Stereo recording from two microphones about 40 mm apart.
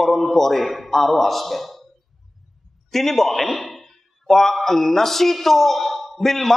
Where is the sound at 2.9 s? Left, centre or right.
Centre.